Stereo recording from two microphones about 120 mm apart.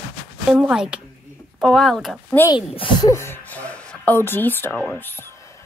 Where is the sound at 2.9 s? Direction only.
25° left (ahead or behind).